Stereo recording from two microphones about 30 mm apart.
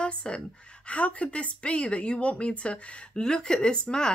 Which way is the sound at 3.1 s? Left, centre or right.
Left.